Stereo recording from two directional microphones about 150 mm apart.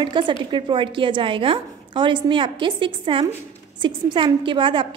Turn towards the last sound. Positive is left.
turn(degrees=-35)  # may be behind; listen again after turning